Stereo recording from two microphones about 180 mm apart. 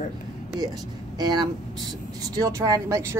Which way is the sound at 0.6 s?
20° right (ahead or behind).